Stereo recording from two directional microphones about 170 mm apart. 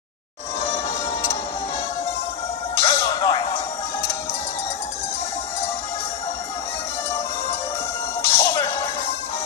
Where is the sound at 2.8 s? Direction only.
25° left (ahead or behind).